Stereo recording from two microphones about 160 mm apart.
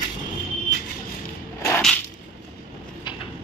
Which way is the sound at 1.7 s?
5° left (ahead or behind).